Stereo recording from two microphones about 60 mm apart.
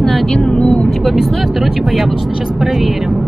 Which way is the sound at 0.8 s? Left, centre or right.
Centre.